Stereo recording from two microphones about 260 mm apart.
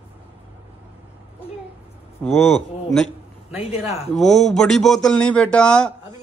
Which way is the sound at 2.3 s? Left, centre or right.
Centre.